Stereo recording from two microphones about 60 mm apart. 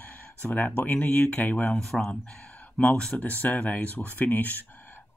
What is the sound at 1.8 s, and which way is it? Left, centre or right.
Speech, centre.